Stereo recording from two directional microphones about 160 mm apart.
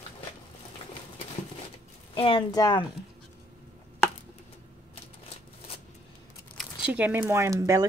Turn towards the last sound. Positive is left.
turn(degrees=-20)  # may be behind; listen again after turning